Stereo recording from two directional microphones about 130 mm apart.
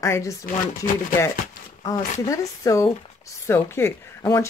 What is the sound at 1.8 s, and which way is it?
Speech, 30° left (ahead or behind).